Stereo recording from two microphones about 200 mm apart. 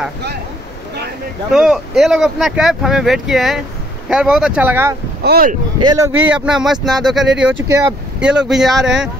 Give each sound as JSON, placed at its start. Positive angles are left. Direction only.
{"t": 1.5, "sound": "speech", "side_deg": 0}
{"t": 5.2, "sound": "speech", "side_deg": -50}
{"t": 5.8, "sound": "speech", "side_deg": -20}
{"t": 6.3, "sound": "speech", "side_deg": -5}